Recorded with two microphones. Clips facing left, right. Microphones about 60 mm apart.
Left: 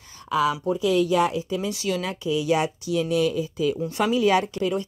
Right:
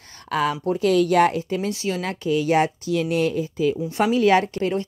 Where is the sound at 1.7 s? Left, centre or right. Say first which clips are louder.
Right 1 dB; right.